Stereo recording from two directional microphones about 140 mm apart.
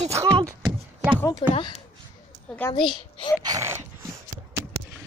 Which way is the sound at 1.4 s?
40° left (ahead or behind).